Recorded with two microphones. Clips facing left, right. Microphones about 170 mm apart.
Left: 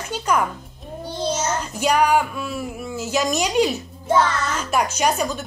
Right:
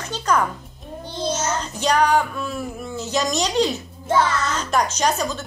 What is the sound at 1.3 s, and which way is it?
A woman's voice, 10° left (ahead or behind).